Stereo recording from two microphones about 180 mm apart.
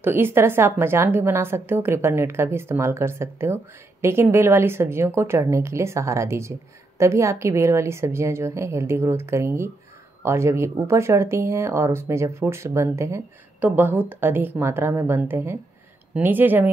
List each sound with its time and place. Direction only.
0.0 s speech: 15° right (ahead or behind)